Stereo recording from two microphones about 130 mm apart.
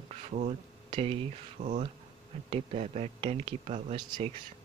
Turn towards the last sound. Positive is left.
turn(degrees=-40)  # may be behind; listen again after turning